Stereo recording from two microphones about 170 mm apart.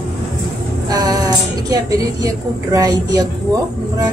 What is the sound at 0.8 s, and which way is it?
Speech, 20° right (ahead or behind).